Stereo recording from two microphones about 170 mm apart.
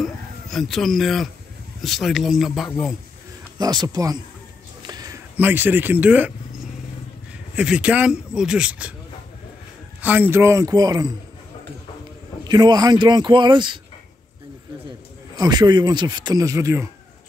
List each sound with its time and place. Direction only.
0.0 s a sound: centre (ahead or behind)
1.8 s speech: centre (ahead or behind)
3.5 s speech: 25° right (ahead or behind)
4.8 s a sound: 20° right (ahead or behind)
7.5 s speech: 5° right (ahead or behind)
10.0 s a man's voice: 10° right (ahead or behind)
12.4 s speech: 25° right (ahead or behind)
14.9 s a man's voice: 25° right (ahead or behind)